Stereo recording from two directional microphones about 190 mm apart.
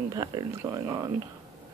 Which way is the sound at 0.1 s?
20° right (ahead or behind).